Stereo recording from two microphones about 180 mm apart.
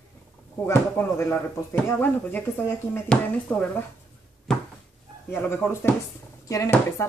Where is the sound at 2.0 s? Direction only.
10° left (ahead or behind).